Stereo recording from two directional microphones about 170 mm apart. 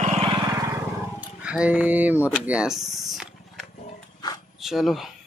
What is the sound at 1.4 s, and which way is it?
Speech, 5° right (ahead or behind).